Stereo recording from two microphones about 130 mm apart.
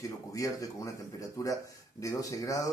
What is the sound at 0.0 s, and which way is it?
Speech, 25° left (ahead or behind).